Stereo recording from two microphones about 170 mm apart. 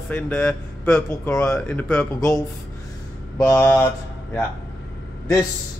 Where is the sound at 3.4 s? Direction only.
15° left (ahead or behind).